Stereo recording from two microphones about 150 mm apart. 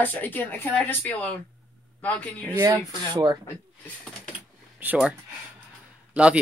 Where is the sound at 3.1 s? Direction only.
30° right (ahead or behind).